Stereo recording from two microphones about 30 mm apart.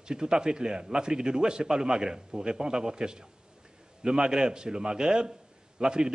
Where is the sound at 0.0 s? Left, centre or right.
Right.